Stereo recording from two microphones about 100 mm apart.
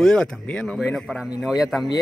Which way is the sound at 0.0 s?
5° left (ahead or behind).